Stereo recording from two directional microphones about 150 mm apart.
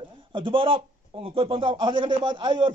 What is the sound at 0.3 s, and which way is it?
A man's voice, 35° right (ahead or behind).